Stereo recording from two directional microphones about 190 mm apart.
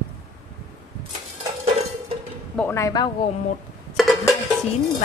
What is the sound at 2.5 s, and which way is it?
Speech, 10° left (ahead or behind).